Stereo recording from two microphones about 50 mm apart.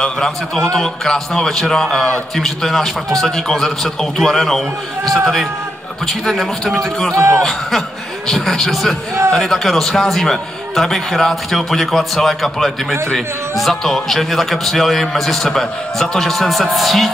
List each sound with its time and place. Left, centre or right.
0.0 s a man's voice: centre
7.2 s speech: right
8.3 s a man's voice: centre